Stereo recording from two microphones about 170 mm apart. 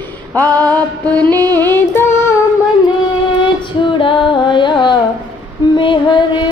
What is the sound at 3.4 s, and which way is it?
Female singing, 30° left (ahead or behind).